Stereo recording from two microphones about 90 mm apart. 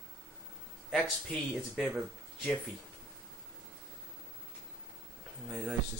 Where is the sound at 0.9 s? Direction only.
Centre (ahead or behind).